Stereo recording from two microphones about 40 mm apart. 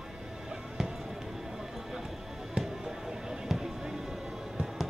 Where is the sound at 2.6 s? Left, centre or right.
Centre.